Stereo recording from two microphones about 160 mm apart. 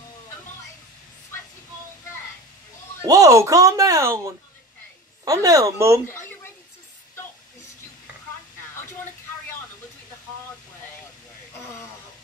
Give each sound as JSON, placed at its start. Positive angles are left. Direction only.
{"t": 3.1, "sound": "speech", "side_deg": -20}
{"t": 6.0, "sound": "a sound", "side_deg": 15}
{"t": 11.5, "sound": "hiss", "side_deg": 15}